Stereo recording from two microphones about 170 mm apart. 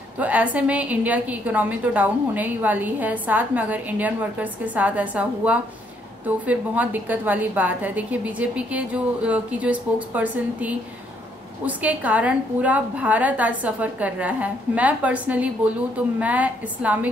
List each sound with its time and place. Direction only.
0.2 s a woman's voice: 10° right (ahead or behind)